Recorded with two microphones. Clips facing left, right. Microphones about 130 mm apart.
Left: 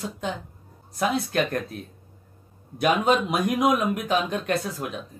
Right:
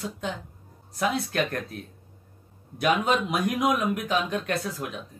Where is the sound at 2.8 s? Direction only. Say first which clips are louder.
Left 3 dB; 30° left (ahead or behind).